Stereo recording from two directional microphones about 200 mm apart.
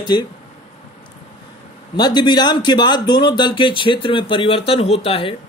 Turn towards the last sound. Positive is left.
turn(degrees=30)  # may be behind; listen again after turning